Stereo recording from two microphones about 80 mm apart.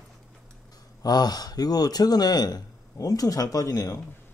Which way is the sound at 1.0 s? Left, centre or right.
Left.